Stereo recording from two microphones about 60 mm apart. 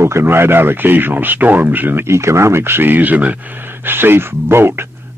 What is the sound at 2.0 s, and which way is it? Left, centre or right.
Speech, right.